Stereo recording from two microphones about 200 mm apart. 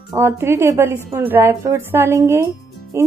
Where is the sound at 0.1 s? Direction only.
15° right (ahead or behind).